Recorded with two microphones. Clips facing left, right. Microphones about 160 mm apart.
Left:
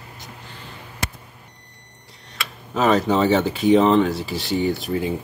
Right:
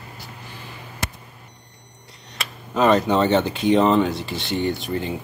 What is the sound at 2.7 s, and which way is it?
Speech, centre (ahead or behind).